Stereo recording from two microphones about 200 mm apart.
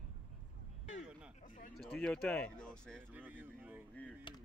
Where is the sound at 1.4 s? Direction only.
45° left (ahead or behind).